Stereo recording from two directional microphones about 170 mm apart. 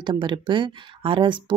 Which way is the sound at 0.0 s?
30° right (ahead or behind).